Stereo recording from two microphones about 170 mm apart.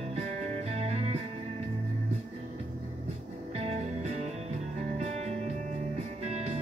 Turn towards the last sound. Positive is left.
turn(degrees=-40)  # may be behind; listen again after turning